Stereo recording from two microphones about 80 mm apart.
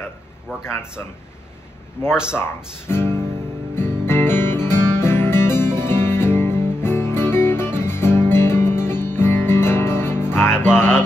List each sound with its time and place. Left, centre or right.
0.5 s speech: centre
2.3 s speech: left
3.7 s music: left